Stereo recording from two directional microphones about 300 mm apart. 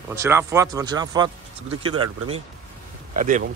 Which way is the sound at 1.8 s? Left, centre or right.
Right.